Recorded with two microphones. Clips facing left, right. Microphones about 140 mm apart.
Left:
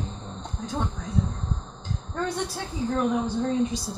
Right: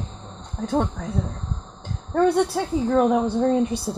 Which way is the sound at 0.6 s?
60° right (ahead or behind).